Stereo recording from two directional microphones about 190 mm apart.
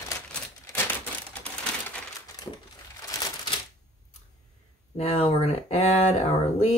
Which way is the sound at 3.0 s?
20° left (ahead or behind).